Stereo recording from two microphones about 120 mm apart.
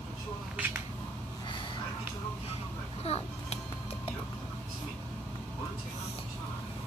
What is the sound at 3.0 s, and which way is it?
Children playing, 60° left (ahead or behind).